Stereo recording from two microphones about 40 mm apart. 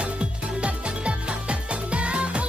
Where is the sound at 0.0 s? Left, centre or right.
Right.